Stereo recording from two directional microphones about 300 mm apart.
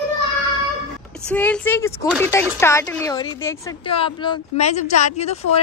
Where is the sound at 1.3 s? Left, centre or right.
Centre.